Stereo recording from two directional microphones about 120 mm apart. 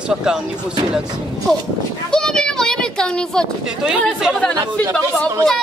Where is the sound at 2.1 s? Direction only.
5° left (ahead or behind).